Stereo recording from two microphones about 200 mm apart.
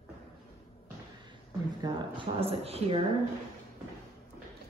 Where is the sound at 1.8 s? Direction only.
25° right (ahead or behind).